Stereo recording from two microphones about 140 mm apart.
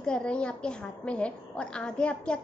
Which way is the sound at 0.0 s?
5° left (ahead or behind).